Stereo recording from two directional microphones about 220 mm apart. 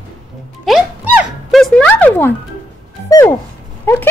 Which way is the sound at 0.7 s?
5° right (ahead or behind).